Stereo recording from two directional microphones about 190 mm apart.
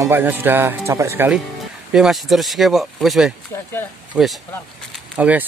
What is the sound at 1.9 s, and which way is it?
Speech, centre (ahead or behind).